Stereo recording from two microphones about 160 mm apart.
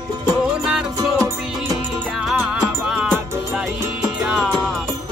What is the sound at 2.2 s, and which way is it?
Music, 5° right (ahead or behind).